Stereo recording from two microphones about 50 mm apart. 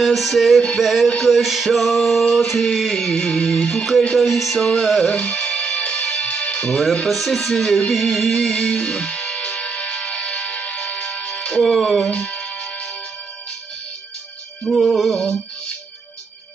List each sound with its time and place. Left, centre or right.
0.0 s male singing: centre
3.1 s music: centre
4.2 s male singing: centre
5.1 s music: left
7.1 s male singing: centre
7.6 s music: centre
8.5 s music: left
11.6 s male singing: centre
12.1 s music: left
14.7 s male singing: centre